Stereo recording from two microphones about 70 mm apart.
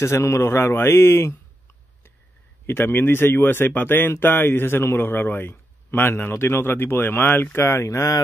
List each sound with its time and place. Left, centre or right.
0.0 s speech: left
2.6 s speech: left